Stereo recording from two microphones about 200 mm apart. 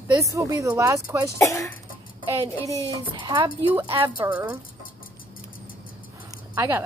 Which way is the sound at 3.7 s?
10° right (ahead or behind).